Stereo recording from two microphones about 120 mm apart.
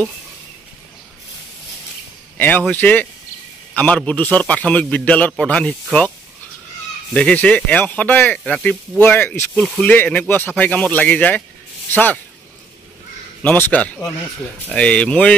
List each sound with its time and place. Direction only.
2.3 s a man's voice: 15° left (ahead or behind)
7.2 s a man's voice: 10° left (ahead or behind)
9.6 s speech: 5° left (ahead or behind)
9.9 s a man's voice: 15° left (ahead or behind)
13.4 s a man's voice: 15° left (ahead or behind)